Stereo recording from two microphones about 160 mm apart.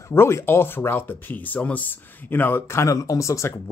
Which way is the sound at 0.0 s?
15° left (ahead or behind).